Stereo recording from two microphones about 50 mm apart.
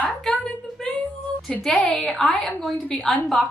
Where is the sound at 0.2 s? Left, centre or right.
Centre.